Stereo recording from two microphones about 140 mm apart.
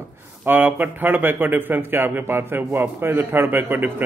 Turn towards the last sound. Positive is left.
turn(degrees=-15)  # may be behind; listen again after turning